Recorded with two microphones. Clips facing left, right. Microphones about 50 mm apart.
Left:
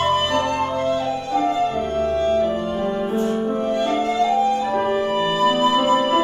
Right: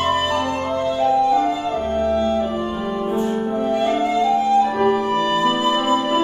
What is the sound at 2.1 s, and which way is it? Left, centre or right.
Music, left.